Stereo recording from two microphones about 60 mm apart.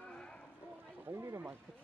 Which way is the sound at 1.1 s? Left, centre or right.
Right.